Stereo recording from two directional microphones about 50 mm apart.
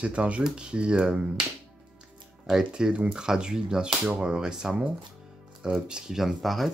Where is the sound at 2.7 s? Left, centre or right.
Centre.